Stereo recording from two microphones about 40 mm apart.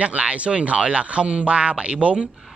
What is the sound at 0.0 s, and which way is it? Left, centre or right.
Speech, right.